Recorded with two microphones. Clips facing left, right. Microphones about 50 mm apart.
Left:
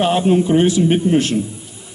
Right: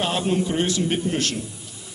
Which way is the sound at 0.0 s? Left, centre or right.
Left.